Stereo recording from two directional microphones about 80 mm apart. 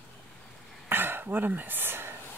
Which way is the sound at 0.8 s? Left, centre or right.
Right.